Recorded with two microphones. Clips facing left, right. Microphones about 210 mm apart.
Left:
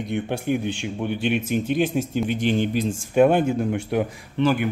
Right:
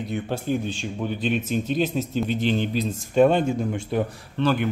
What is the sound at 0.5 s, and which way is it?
Speech, 15° left (ahead or behind).